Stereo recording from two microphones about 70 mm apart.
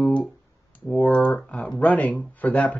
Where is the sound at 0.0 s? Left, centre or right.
Centre.